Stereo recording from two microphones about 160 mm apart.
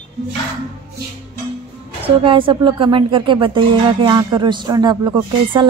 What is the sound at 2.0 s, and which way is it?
Speech, 35° right (ahead or behind).